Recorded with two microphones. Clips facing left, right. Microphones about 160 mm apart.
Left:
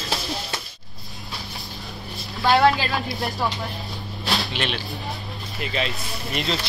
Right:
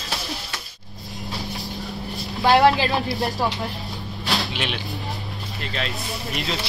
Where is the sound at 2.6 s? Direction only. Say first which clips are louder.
Right 2 dB; 20° right (ahead or behind).